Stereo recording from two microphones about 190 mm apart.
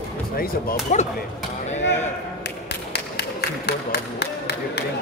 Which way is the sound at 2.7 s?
60° left (ahead or behind).